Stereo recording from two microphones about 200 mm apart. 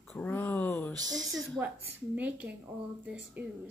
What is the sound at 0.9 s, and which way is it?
Speech, 20° right (ahead or behind).